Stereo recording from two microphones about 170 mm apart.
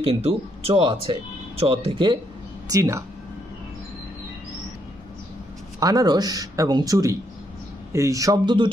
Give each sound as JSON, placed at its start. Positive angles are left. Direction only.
{"t": 0.0, "sound": "speech", "side_deg": -35}
{"t": 2.7, "sound": "speech", "side_deg": -20}
{"t": 5.8, "sound": "speech", "side_deg": -20}